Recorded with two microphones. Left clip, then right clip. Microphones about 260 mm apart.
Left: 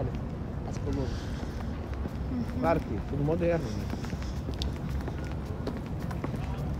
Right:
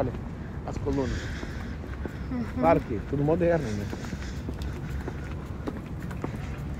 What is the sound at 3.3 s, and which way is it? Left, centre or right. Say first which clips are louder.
Speech: right 4 dB; right.